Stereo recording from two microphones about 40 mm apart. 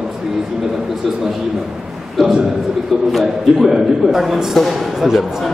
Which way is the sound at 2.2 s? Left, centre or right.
Centre.